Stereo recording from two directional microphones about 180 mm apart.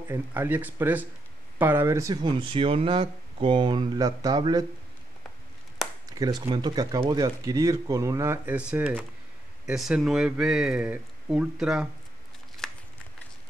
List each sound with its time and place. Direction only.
0.1 s speech: 10° right (ahead or behind)
6.0 s speech: 20° right (ahead or behind); by 11.9 s 5° right (ahead or behind)
12.6 s a sound: 5° left (ahead or behind)